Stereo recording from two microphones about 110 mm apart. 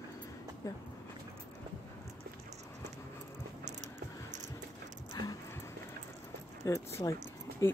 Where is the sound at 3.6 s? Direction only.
90° right.